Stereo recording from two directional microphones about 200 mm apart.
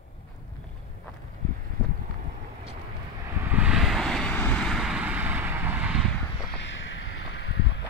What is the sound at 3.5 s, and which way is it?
Vehicle, 5° right (ahead or behind).